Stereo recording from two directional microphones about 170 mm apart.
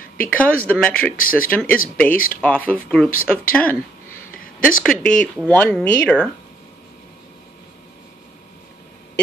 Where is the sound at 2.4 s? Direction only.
10° left (ahead or behind).